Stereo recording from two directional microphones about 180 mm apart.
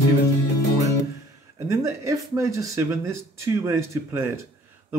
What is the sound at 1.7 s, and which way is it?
Speech, 15° right (ahead or behind).